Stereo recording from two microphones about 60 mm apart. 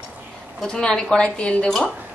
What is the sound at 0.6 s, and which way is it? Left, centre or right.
Speech, centre.